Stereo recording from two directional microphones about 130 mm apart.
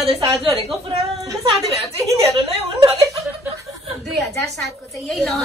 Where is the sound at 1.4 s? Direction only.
50° right (ahead or behind).